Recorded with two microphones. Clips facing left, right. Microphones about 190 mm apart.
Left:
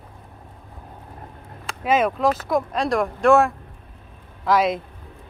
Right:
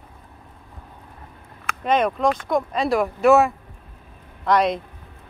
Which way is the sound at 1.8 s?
5° left (ahead or behind).